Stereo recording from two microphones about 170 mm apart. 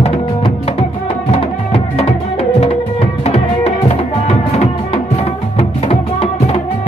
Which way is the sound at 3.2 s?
35° left (ahead or behind).